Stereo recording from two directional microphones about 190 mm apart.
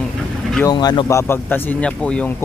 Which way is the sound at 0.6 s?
20° left (ahead or behind).